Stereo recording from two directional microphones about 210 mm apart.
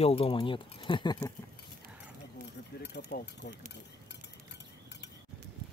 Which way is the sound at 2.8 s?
55° left (ahead or behind).